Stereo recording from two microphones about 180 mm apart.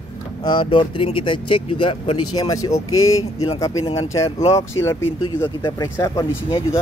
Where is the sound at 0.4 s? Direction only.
25° left (ahead or behind).